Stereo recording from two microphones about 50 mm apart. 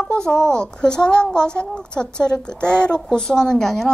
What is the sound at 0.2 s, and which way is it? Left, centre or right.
A woman's voice, centre.